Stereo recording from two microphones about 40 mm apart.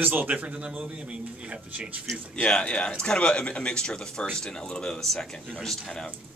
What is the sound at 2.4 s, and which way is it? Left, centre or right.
Speech, left.